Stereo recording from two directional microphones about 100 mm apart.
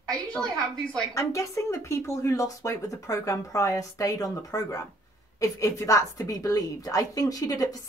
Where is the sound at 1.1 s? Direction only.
30° left (ahead or behind).